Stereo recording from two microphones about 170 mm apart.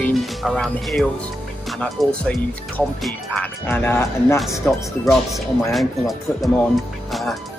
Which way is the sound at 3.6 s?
10° left (ahead or behind).